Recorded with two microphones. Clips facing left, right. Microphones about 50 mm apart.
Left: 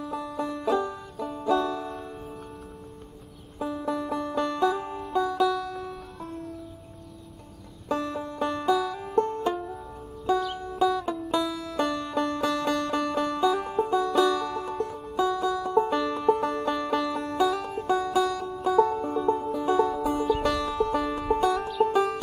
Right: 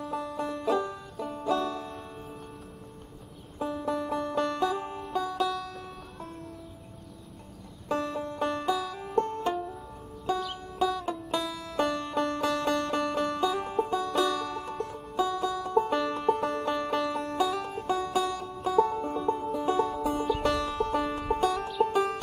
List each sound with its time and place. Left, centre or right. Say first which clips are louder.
0.0 s music: left 1 dB; centre
3.5 s banjo: left 1 dB; centre
4.6 s music: left 4 dB; centre
8.1 s music: left 1 dB; centre
11.7 s music: right 1 dB; centre
14.1 s music: left 4 dB; centre
14.4 s music: left 4 dB; centre
15.1 s music: left 3 dB; centre
15.4 s music: left 4 dB; centre
15.9 s banjo: left 2 dB; centre
16.2 s music: left 3 dB; centre
18.0 s music: left 4 dB; centre
19.6 s music: left 4 dB; centre
20.1 s music: left 2 dB; centre